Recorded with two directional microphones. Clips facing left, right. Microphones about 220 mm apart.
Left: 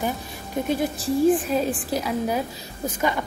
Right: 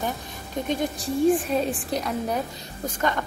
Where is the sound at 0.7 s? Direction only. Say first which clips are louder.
Left 3 dB; 5° left (ahead or behind).